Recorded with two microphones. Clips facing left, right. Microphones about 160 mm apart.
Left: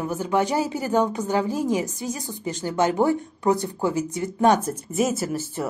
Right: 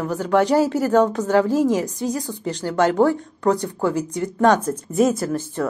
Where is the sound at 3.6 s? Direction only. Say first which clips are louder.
Right 3 dB; 65° right (ahead or behind).